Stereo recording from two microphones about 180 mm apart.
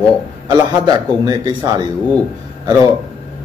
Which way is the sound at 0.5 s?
20° right (ahead or behind).